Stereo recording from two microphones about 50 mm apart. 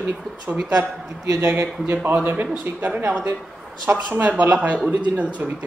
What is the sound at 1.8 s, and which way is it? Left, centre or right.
Speech, right.